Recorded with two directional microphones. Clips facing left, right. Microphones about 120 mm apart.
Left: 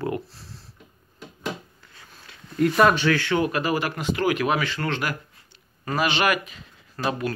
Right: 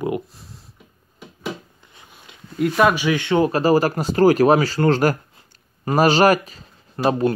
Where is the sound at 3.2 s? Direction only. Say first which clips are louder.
Right 6 dB; 30° right (ahead or behind).